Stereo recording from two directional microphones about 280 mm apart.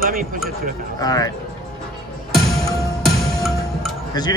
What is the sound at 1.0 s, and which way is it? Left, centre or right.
Speech, centre.